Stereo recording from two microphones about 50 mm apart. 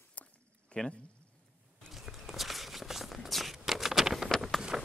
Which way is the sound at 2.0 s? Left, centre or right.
Centre.